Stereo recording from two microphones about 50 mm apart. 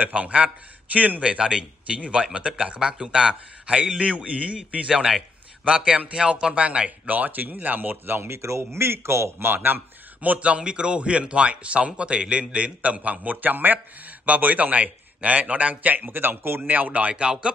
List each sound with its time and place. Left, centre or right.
0.0 s a man's voice: right
1.2 s speech: centre
7.1 s speech: right
10.2 s a man's voice: right
16.6 s a man's voice: right
17.1 s speech: centre